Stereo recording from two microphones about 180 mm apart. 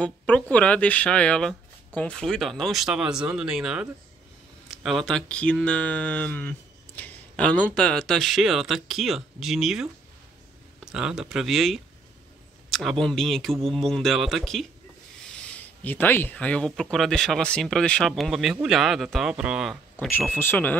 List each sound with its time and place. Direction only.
0.0 s speech: 5° left (ahead or behind)
10.9 s speech: 5° right (ahead or behind)
13.0 s speech: centre (ahead or behind)
20.1 s speech: 10° left (ahead or behind)